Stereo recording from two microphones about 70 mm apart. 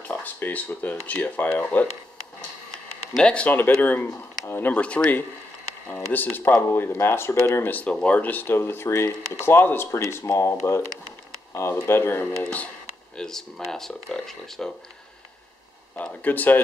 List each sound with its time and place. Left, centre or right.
0.1 s a sound: left
1.0 s speech: left
3.2 s speech: centre
3.5 s speech: left
4.1 s speech: left
4.6 s speech: centre; by 7.7 s left
7.9 s speech: centre
9.8 s speech: left
13.1 s speech: centre
16.0 s speech: left